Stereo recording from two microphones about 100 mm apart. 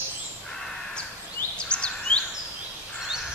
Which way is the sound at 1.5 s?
10° left (ahead or behind).